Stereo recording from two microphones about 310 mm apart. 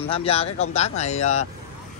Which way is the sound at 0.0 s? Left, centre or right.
Centre.